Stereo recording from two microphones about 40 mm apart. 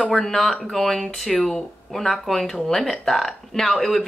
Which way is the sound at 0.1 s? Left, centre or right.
Centre.